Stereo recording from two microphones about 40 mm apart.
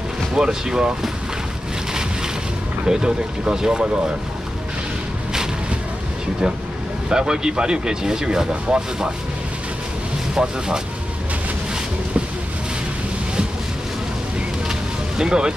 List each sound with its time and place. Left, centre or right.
0.3 s speech: centre
2.8 s speech: right
7.1 s speech: centre
10.3 s speech: centre
14.7 s music: centre